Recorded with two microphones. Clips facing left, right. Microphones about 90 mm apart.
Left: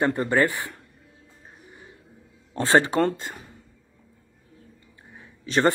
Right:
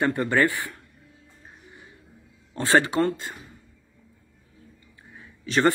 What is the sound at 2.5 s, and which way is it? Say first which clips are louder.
Speech: left 1 dB; 20° left (ahead or behind).